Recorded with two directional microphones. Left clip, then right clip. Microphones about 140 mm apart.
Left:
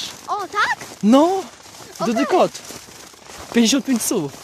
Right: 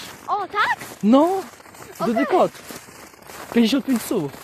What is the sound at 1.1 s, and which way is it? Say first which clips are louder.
Speech: left 2 dB; 30° left (ahead or behind).